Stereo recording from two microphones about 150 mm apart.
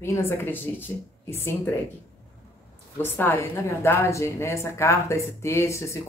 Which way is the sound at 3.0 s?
15° left (ahead or behind).